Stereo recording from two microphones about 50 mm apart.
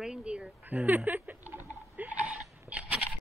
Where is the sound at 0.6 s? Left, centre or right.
Right.